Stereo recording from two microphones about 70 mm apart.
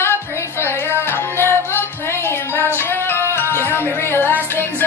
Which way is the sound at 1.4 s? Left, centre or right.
Left.